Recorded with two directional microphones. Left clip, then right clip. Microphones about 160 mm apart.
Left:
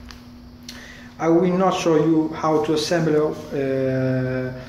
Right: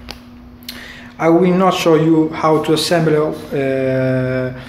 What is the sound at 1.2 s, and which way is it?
A man's voice, 20° right (ahead or behind).